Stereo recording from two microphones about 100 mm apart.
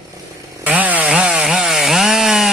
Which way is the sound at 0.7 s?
15° right (ahead or behind).